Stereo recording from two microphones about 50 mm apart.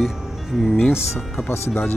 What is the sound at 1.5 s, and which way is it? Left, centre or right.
Speech, left.